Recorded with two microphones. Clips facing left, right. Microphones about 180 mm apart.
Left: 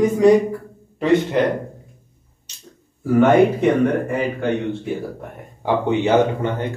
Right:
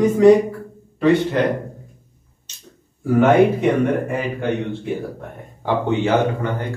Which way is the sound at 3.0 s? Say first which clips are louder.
Even; centre (ahead or behind).